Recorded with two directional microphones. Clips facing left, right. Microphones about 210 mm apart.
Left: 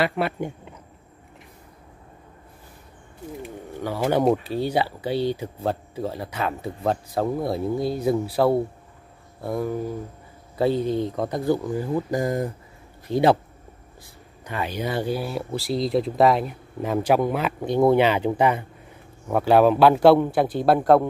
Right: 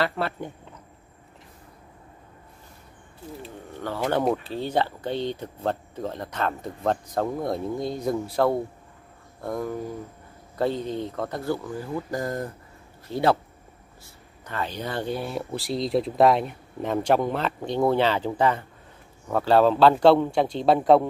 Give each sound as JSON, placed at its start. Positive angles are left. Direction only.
{"t": 0.0, "sound": "speech", "side_deg": 15}
{"t": 3.4, "sound": "speech", "side_deg": 10}